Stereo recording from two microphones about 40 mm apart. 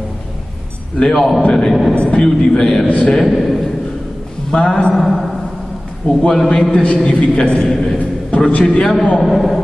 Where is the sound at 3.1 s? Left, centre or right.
Centre.